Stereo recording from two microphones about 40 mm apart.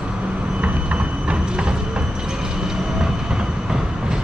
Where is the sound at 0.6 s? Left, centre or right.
Right.